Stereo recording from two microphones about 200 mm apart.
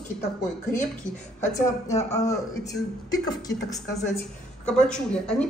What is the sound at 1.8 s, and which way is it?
Speech, 15° left (ahead or behind).